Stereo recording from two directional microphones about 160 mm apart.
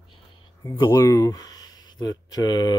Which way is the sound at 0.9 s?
20° left (ahead or behind).